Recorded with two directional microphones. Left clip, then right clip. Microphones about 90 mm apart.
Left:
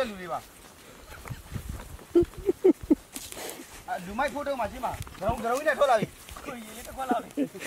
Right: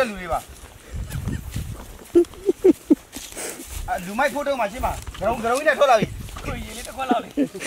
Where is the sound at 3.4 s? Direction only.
Centre (ahead or behind).